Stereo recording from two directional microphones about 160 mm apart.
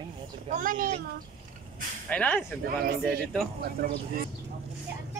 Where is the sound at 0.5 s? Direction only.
55° right (ahead or behind).